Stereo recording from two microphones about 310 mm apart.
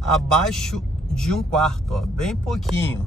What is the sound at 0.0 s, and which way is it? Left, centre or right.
Speech, centre.